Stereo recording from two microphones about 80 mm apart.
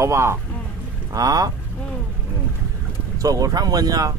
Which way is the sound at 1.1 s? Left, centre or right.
Right.